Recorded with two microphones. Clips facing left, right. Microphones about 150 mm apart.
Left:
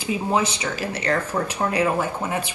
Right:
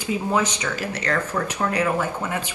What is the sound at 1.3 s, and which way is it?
Speech, 30° left (ahead or behind).